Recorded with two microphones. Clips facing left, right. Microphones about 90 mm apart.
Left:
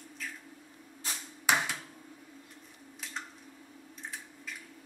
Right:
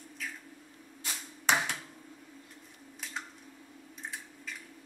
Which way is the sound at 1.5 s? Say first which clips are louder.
Even; 5° left (ahead or behind).